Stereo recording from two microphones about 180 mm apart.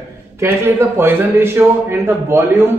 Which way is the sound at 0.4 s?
15° right (ahead or behind).